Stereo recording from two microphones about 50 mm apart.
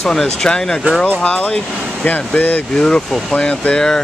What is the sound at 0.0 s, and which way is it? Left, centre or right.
Speech, centre.